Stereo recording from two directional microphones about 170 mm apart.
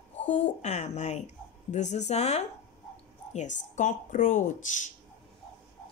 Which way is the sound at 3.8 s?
50° left (ahead or behind).